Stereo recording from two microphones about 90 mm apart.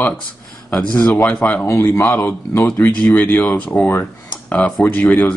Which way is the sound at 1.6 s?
30° left (ahead or behind).